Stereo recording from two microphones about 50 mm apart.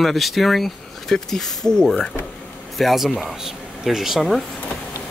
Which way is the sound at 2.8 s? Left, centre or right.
Centre.